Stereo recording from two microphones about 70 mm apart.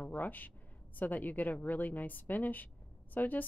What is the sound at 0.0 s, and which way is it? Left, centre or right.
A woman's voice, left.